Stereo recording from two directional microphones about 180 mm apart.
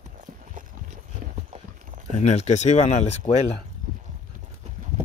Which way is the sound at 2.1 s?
40° left (ahead or behind).